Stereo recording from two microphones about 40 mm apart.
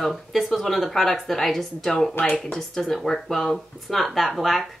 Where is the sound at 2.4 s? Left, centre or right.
Centre.